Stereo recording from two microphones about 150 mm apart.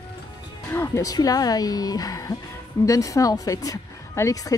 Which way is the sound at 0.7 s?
20° left (ahead or behind).